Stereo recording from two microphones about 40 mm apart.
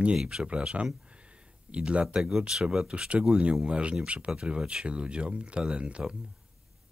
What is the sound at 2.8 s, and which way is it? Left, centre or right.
Speech, right.